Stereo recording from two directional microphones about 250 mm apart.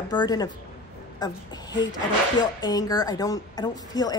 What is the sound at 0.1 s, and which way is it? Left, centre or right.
A woman's voice, centre.